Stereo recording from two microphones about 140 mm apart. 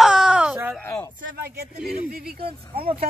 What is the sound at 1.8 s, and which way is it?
Speech, 5° right (ahead or behind).